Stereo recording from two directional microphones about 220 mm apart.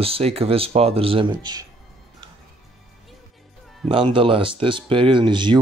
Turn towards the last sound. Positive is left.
turn(degrees=-20)  # may be behind; listen again after turning